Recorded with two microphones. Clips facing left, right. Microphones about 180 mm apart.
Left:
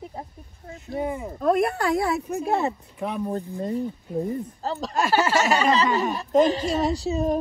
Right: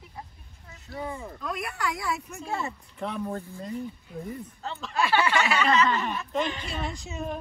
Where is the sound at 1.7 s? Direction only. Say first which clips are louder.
Left 8 dB; 35° left (ahead or behind).